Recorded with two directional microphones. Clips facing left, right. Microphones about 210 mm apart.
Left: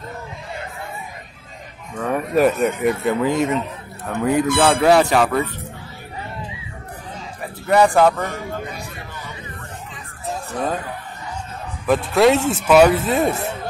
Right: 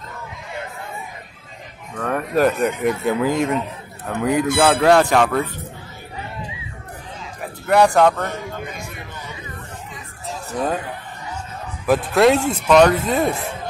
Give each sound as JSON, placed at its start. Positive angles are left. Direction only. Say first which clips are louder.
{"t": 2.0, "sound": "speech", "louder": "left 1 dB", "side_deg": 5}
{"t": 7.6, "sound": "speech", "louder": "even", "side_deg": 5}
{"t": 11.8, "sound": "speech", "louder": "even", "side_deg": 0}